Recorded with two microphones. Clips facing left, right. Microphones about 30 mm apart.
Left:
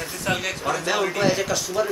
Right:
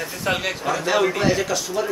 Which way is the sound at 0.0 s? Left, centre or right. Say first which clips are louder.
Right 2 dB; centre.